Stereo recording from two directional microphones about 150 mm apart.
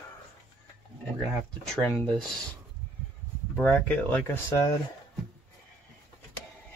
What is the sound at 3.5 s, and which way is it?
Speech, 10° left (ahead or behind).